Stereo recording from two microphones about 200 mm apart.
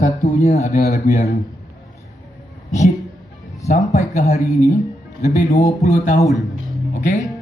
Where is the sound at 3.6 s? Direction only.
35° left (ahead or behind).